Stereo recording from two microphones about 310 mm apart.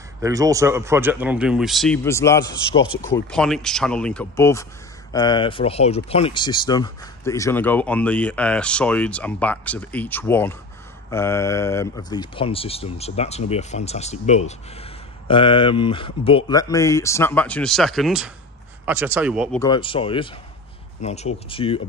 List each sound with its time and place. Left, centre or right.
0.2 s speech: centre
3.3 s speech: centre
19.6 s speech: centre